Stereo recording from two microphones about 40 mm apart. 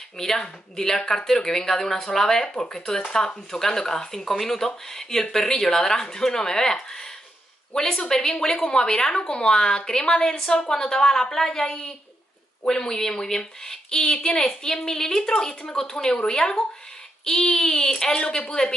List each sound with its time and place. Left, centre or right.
0.4 s speech: centre
18.2 s speech: left